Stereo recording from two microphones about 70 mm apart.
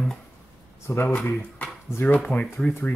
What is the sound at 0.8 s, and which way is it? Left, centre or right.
Speech, left.